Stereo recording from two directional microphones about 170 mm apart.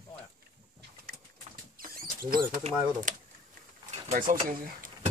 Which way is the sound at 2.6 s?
50° right (ahead or behind).